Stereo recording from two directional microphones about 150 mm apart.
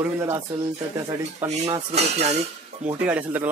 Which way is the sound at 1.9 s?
45° right (ahead or behind).